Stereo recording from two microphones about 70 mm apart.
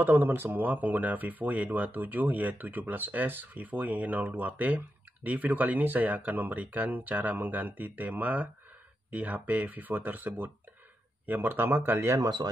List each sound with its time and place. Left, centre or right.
0.0 s speech: right
12.2 s speech: right